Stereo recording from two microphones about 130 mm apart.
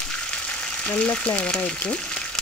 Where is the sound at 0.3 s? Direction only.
10° left (ahead or behind).